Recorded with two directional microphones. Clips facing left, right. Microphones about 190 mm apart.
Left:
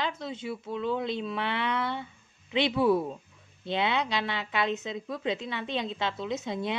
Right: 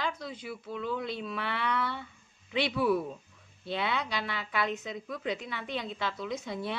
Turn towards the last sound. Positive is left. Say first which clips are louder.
# left 3 dB
turn(degrees=20)  # may be behind; listen again after turning